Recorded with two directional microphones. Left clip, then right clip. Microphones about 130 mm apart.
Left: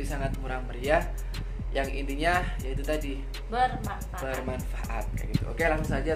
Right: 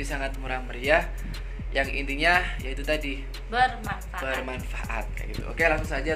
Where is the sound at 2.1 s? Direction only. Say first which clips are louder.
Right 5 dB; 10° right (ahead or behind).